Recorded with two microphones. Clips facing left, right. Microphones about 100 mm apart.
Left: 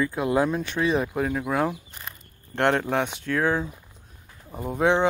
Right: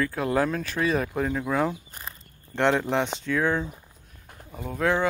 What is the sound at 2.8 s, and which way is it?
Speech, 10° left (ahead or behind).